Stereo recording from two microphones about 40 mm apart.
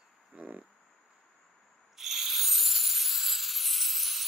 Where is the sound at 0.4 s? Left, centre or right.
Right.